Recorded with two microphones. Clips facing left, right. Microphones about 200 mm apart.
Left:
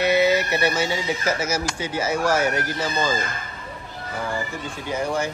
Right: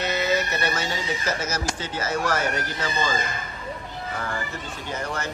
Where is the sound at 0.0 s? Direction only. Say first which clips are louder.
Left 6 dB; 10° left (ahead or behind).